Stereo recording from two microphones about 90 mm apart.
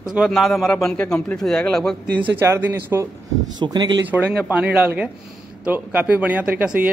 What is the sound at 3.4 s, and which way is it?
Speech, 50° right (ahead or behind).